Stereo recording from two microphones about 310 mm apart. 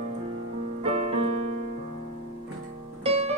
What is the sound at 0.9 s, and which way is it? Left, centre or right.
Keyboard, centre.